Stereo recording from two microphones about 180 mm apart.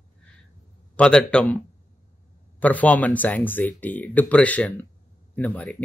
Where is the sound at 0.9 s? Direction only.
5° left (ahead or behind).